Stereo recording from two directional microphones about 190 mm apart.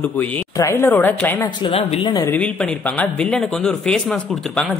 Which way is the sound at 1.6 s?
30° left (ahead or behind).